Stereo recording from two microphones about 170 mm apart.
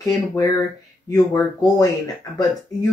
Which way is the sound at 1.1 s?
20° left (ahead or behind).